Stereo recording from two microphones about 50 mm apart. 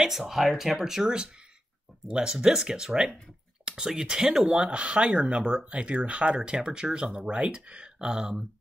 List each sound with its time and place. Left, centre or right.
0.0 s speech: centre
4.6 s speech: right